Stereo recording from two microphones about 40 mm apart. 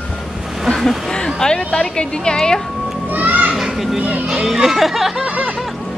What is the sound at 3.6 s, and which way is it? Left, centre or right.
Children playing, centre.